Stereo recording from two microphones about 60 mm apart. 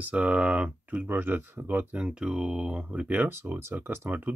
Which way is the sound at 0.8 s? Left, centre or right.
Right.